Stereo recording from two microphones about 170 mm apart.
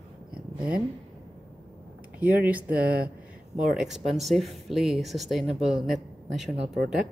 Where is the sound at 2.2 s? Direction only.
10° right (ahead or behind).